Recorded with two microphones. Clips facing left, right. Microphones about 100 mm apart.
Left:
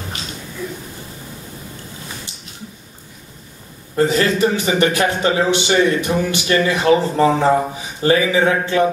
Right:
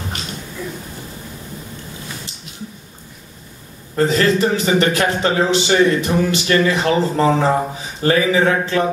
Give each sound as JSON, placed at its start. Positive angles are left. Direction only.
{"t": 3.9, "sound": "a man's voice", "side_deg": 20}